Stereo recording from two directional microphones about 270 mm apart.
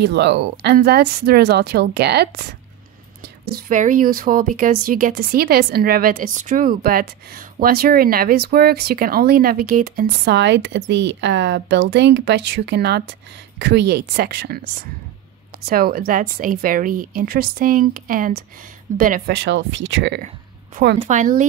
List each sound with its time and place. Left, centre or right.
0.0 s speech: right
3.4 s speech: right
21.0 s speech: right